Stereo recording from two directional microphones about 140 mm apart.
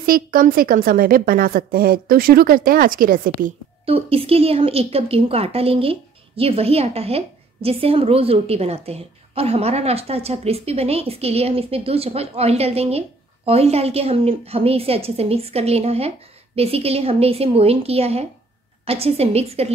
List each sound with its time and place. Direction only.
0.0 s a woman's voice: 90° right
3.8 s speech: 45° right (ahead or behind)